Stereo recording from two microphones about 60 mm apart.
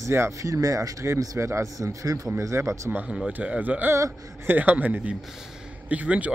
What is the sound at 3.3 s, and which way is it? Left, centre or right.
Speech, right.